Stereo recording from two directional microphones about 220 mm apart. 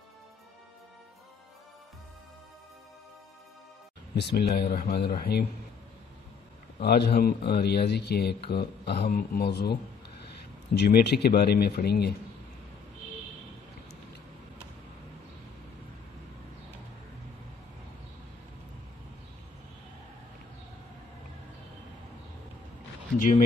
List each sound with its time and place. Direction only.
4.1 s speech: 50° left (ahead or behind)
6.8 s speech: 45° left (ahead or behind)